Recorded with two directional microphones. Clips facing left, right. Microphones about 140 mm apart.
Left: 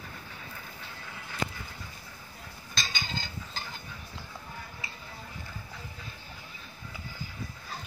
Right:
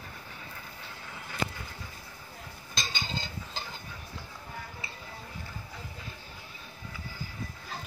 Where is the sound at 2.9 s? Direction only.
25° right (ahead or behind).